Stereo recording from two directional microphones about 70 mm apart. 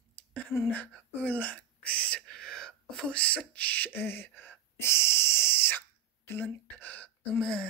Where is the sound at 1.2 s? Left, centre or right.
Left.